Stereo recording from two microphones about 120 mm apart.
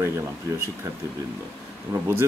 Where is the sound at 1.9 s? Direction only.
20° right (ahead or behind).